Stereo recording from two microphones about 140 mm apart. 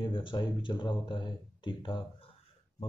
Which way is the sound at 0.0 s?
35° left (ahead or behind).